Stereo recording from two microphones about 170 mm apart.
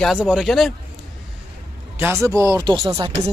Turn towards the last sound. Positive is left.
turn(degrees=-20)  # may be behind; listen again after turning